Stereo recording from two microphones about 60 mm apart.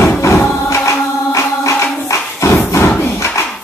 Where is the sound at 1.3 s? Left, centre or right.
Left.